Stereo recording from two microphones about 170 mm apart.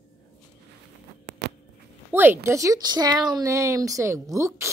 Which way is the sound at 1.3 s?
90° right.